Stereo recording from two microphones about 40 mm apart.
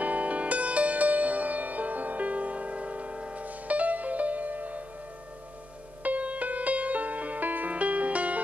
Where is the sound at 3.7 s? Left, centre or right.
Right.